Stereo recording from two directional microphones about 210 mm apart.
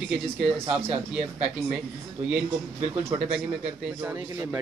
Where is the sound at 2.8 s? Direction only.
30° right (ahead or behind).